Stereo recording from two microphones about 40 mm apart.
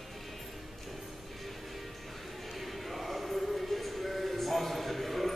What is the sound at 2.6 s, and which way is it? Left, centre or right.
Music, centre.